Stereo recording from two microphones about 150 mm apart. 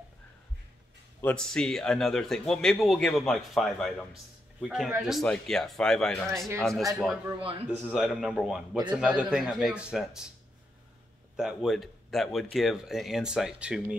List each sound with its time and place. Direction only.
1.2 s a man's voice: 5° left (ahead or behind)
6.7 s speech: 25° right (ahead or behind)
7.6 s a man's voice: 5° right (ahead or behind)
11.3 s a man's voice: 5° right (ahead or behind)